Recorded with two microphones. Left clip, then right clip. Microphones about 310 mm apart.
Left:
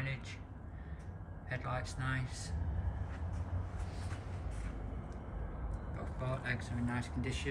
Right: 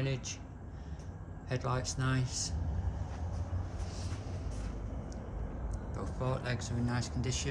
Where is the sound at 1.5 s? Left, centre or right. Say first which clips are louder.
Right 4 dB; centre.